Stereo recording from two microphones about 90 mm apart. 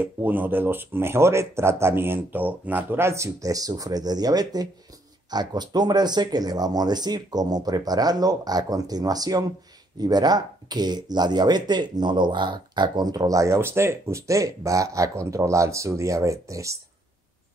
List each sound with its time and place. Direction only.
0.0 s speech: 20° right (ahead or behind); by 16.7 s 35° right (ahead or behind)